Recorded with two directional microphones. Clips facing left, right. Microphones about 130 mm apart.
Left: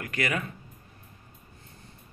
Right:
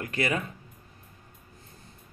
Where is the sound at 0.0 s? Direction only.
30° right (ahead or behind).